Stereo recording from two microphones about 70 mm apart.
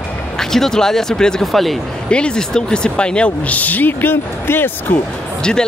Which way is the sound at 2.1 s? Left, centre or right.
Centre.